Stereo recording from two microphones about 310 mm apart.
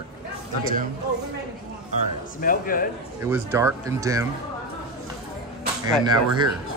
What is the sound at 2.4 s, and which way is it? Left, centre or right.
Speech, left.